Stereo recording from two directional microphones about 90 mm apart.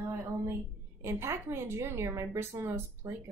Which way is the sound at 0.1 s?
30° right (ahead or behind).